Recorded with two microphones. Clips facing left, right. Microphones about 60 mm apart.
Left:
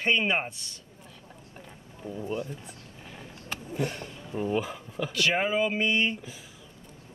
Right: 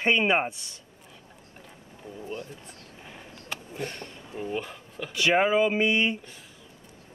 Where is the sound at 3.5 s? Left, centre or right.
Centre.